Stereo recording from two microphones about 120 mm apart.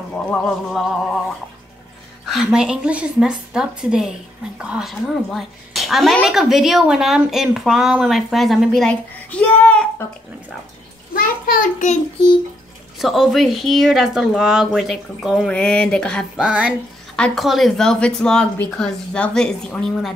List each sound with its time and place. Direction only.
0.4 s a woman's voice: centre (ahead or behind)
2.2 s a woman's voice: 5° right (ahead or behind)
11.6 s a child's voice: 90° left
13.0 s a woman's voice: centre (ahead or behind)
16.3 s a woman's voice: 10° right (ahead or behind)
17.1 s a woman's voice: 5° left (ahead or behind)